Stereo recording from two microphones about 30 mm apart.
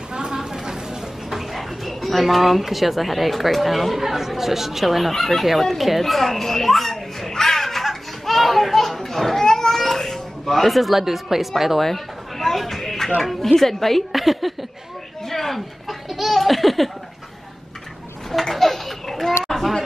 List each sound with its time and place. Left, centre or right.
0.1 s a sound: right
1.3 s a woman's voice: centre
7.3 s children playing: centre
11.0 s speech: centre
11.8 s a sound: centre
13.2 s a woman's voice: centre
14.1 s a woman's voice: centre
15.2 s a sound: centre
16.1 s laughter: centre
18.4 s children playing: centre